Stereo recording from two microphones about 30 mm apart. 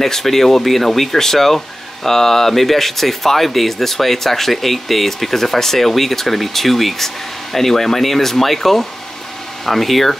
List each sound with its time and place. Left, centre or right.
0.0 s speech: centre